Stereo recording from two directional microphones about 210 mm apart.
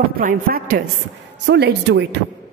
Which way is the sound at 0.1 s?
40° right (ahead or behind).